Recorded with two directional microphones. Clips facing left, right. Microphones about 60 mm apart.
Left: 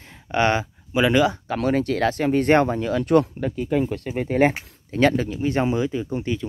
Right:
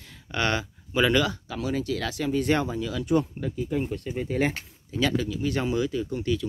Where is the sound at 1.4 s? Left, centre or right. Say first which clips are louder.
Left 7 dB; left.